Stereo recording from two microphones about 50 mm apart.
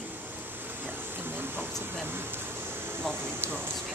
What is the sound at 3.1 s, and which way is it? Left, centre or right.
Speech, right.